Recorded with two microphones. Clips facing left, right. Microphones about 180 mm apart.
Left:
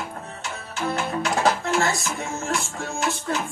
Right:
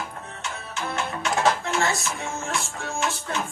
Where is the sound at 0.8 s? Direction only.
35° left (ahead or behind).